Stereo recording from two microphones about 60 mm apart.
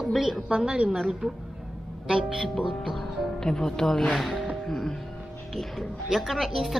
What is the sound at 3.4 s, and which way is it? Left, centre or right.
Speech, centre.